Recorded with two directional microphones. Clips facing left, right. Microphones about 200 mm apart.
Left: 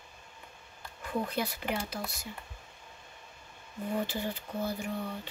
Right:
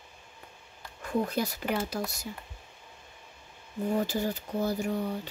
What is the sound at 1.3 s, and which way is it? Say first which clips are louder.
Speech: right 3 dB; 40° right (ahead or behind).